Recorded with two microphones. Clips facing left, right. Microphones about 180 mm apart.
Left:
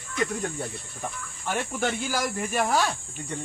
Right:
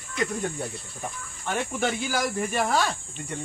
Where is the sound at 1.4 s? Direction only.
Centre (ahead or behind).